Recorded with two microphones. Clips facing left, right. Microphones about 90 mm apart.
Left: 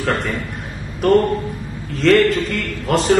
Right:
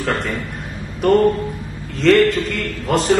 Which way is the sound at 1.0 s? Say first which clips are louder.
Right 1 dB; centre (ahead or behind).